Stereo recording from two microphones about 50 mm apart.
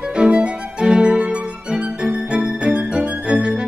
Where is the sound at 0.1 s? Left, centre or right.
Right.